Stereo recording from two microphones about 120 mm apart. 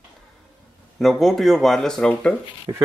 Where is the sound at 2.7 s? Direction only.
35° right (ahead or behind).